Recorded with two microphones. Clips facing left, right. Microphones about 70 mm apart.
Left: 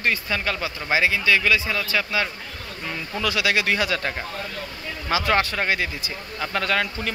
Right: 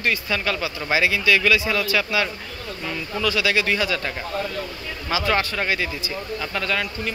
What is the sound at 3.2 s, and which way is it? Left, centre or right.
Speech, left.